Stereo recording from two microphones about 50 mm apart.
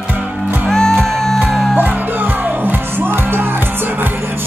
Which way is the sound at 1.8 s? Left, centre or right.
Right.